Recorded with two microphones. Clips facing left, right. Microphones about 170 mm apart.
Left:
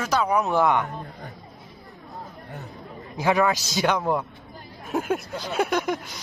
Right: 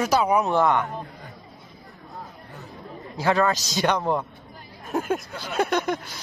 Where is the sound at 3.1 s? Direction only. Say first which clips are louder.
Even; 15° left (ahead or behind).